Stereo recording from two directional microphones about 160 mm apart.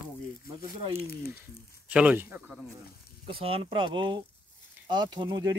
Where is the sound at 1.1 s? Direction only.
75° left (ahead or behind).